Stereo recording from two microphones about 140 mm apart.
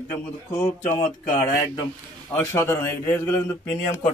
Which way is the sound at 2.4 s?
20° left (ahead or behind).